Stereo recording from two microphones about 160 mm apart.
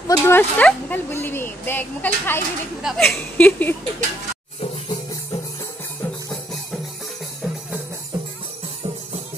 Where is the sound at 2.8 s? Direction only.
Centre (ahead or behind).